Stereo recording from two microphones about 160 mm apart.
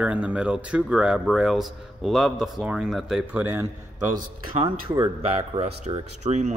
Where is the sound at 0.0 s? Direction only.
10° right (ahead or behind).